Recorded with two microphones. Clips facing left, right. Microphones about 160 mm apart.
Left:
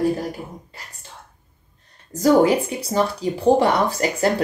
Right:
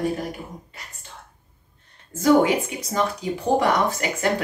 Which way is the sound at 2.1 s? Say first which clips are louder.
Left 2 dB; 35° left (ahead or behind).